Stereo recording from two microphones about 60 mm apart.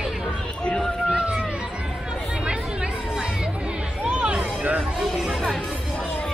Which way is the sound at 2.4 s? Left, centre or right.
Centre.